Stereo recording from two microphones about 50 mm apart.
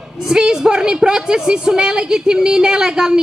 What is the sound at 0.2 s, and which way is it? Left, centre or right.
Speech, centre.